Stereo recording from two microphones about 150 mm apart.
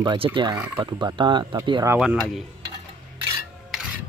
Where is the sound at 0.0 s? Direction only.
30° right (ahead or behind).